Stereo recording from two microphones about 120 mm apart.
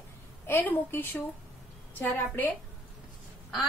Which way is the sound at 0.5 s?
15° left (ahead or behind).